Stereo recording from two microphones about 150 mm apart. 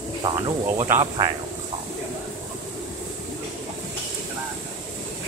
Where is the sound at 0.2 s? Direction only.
30° right (ahead or behind).